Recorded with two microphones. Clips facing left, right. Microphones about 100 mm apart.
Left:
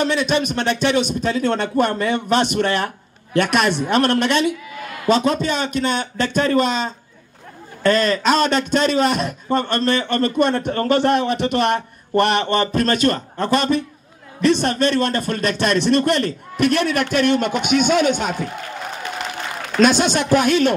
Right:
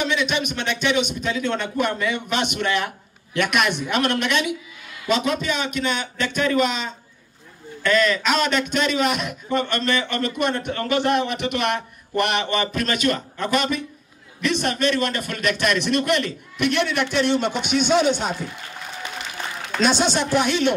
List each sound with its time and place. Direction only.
0.0 s a man's voice: 40° left (ahead or behind)
4.6 s a sound: 60° left (ahead or behind)
5.0 s a man's voice: 35° left (ahead or behind); by 18.5 s 50° left (ahead or behind)
19.8 s speech: 50° left (ahead or behind)